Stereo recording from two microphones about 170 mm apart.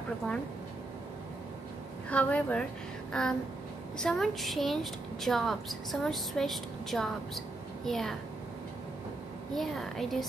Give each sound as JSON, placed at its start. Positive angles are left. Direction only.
{"t": 2.0, "sound": "a woman's voice", "side_deg": 10}
{"t": 3.1, "sound": "a sound", "side_deg": 5}
{"t": 4.0, "sound": "a woman's voice", "side_deg": 0}
{"t": 9.5, "sound": "a woman's voice", "side_deg": 0}